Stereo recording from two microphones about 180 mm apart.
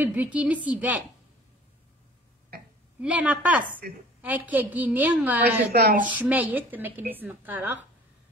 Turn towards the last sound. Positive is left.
turn(degrees=-10)  # may be behind; listen again after turning